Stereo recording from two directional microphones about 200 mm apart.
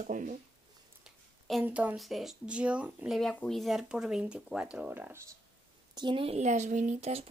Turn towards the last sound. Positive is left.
turn(degrees=-30)  # may be behind; listen again after turning